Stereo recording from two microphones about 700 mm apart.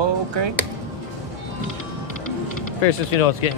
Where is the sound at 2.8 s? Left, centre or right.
Left.